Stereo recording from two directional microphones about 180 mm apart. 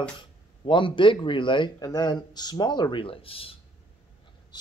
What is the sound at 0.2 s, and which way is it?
A man's voice, 25° left (ahead or behind).